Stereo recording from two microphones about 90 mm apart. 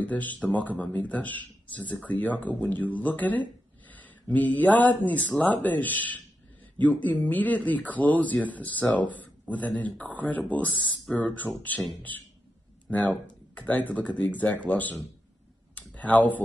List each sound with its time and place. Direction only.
0.0 s speech: 20° left (ahead or behind)
13.6 s speech: 15° left (ahead or behind)
15.7 s a sound: 15° left (ahead or behind)